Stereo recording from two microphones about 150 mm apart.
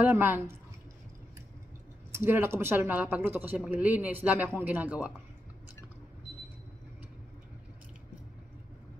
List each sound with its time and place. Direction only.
0.0 s speech: 15° right (ahead or behind)
2.1 s speech: 15° right (ahead or behind)